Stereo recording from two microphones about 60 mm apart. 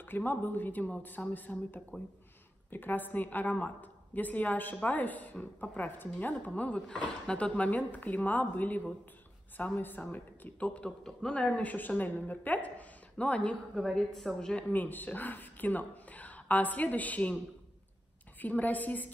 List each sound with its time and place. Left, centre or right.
0.0 s a woman's voice: left
13.7 s a woman's voice: centre
14.7 s speech: left
18.4 s a woman's voice: left